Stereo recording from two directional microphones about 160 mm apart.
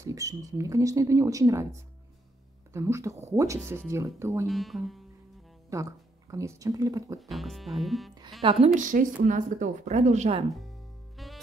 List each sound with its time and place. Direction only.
0.0 s speech: 20° right (ahead or behind)
4.5 s speech: centre (ahead or behind)
5.7 s speech: 20° right (ahead or behind)
7.2 s speech: centre (ahead or behind)
8.4 s a woman's voice: 35° right (ahead or behind)
8.7 s speech: 50° right (ahead or behind)
11.2 s music: centre (ahead or behind)